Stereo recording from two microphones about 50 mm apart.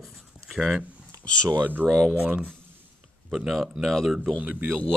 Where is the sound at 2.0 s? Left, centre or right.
Centre.